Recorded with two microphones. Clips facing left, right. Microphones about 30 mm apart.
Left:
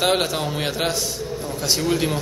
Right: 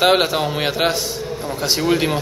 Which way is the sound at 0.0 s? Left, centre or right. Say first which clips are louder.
Right 5 dB; right.